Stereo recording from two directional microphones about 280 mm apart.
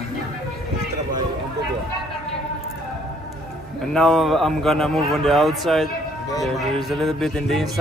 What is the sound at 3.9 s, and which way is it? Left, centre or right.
Speech, centre.